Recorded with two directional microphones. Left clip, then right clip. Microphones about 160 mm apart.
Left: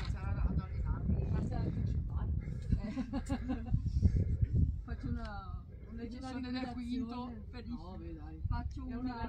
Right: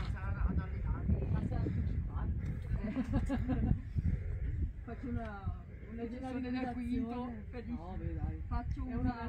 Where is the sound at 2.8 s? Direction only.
65° right (ahead or behind).